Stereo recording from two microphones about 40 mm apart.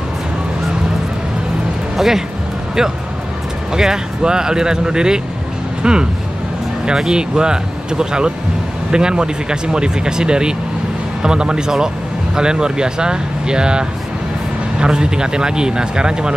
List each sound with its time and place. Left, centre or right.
2.0 s speech: centre
3.7 s speech: centre